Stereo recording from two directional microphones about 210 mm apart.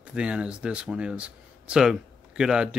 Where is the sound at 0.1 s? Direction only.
5° right (ahead or behind).